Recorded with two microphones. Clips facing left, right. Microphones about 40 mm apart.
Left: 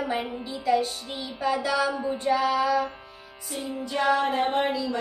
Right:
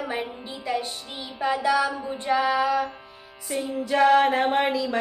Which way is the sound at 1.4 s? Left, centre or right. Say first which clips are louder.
Right 3 dB; right.